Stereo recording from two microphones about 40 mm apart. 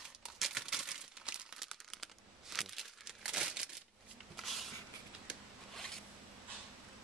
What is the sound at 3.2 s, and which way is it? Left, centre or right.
Crumpling, centre.